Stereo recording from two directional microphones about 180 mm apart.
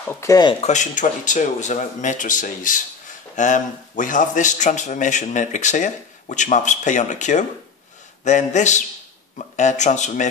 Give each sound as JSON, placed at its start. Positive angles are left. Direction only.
{"t": 0.1, "sound": "speech", "side_deg": 15}
{"t": 0.6, "sound": "speech", "side_deg": 40}